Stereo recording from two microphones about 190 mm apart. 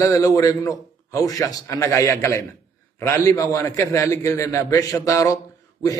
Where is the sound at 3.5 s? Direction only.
15° left (ahead or behind).